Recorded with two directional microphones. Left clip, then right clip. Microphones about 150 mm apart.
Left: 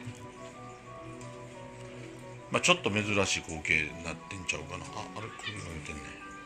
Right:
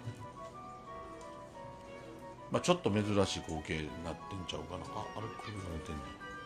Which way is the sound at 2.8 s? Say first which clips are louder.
Left 3 dB; 20° right (ahead or behind).